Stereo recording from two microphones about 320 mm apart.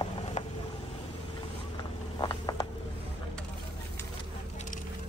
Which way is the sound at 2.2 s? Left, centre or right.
Centre.